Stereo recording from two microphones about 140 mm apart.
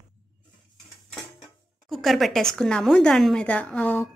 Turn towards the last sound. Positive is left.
turn(degrees=10)  # may be behind; listen again after turning